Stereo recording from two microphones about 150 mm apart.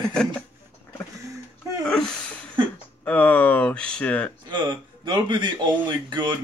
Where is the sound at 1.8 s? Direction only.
5° left (ahead or behind).